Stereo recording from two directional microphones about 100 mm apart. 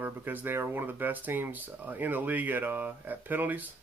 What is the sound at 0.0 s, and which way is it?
Speech, 20° right (ahead or behind).